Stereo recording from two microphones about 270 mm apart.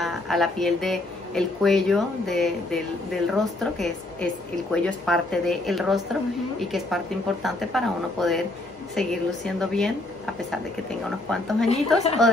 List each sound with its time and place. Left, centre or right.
0.0 s a woman's voice: centre
11.2 s a woman's voice: centre
11.7 s a woman's voice: left